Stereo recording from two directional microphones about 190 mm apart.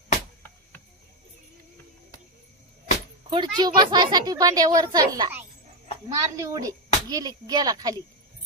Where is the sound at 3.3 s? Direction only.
20° right (ahead or behind).